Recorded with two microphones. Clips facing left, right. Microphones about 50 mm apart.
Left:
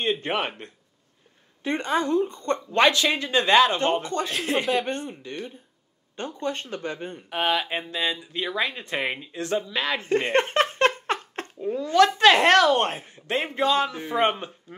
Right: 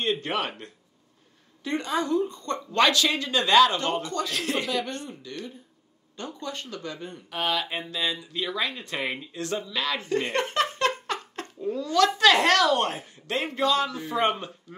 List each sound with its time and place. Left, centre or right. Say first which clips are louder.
0.0 s a woman's voice: left 2 dB; left
1.6 s a woman's voice: left 3 dB; left
4.3 s speech: left 2 dB; centre
4.8 s a woman's voice: left 5 dB; left